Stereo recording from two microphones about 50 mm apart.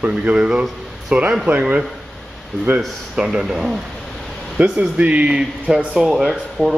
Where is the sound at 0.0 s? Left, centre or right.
Right.